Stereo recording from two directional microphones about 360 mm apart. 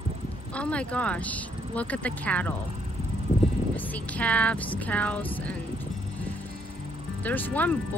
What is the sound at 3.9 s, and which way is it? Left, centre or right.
Speech, centre.